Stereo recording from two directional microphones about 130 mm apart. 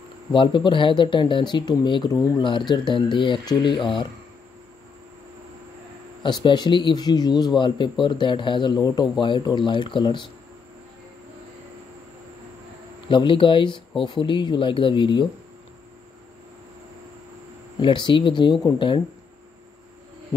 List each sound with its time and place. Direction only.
0.3 s speech: 40° left (ahead or behind)
6.2 s speech: 35° left (ahead or behind)
13.1 s speech: 40° left (ahead or behind)
17.7 s speech: 35° left (ahead or behind)